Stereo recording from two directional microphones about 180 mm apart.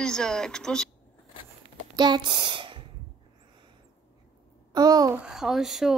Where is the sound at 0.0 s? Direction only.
5° left (ahead or behind).